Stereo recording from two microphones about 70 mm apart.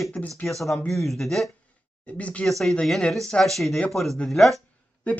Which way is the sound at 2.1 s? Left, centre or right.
Centre.